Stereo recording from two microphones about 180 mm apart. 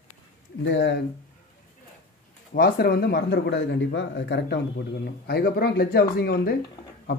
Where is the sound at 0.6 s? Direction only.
85° left.